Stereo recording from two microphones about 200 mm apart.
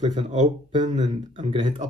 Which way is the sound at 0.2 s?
25° right (ahead or behind).